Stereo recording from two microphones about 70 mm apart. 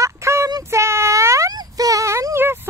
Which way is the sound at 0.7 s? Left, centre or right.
Right.